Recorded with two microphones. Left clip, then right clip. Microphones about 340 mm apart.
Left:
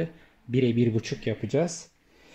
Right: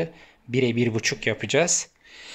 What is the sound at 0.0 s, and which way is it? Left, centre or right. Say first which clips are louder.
Speech: right 4 dB; centre.